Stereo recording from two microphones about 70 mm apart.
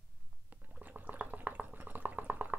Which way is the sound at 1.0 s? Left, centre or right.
Right.